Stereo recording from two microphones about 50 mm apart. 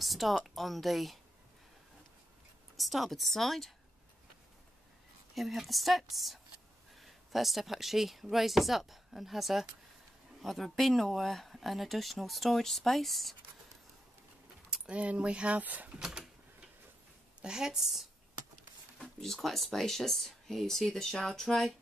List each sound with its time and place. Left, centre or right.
0.0 s speech: centre
2.8 s speech: centre
5.3 s speech: centre
14.9 s speech: right
16.0 s a woman's voice: centre
17.4 s a woman's voice: centre
19.1 s speech: centre